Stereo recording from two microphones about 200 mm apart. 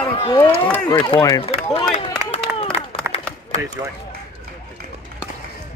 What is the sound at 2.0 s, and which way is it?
Clapping, 30° left (ahead or behind).